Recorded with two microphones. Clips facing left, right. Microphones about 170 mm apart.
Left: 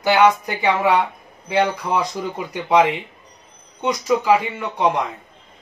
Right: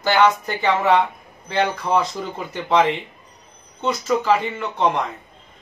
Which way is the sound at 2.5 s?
10° left (ahead or behind).